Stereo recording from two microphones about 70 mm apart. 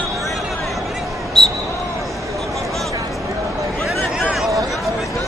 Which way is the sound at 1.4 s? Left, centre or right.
Centre.